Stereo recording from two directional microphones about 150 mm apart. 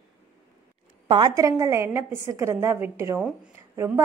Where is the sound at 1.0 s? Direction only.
30° right (ahead or behind).